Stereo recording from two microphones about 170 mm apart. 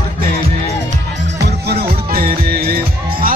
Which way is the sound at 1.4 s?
70° right (ahead or behind).